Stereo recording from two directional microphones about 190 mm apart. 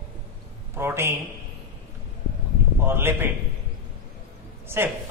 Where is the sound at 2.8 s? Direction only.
10° right (ahead or behind).